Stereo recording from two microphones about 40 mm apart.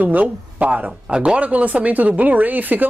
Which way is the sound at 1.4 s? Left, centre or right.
Right.